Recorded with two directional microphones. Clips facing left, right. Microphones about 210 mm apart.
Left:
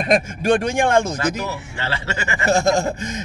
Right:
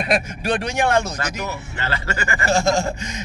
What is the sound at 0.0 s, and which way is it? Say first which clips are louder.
Speech: left 3 dB; 45° left (ahead or behind).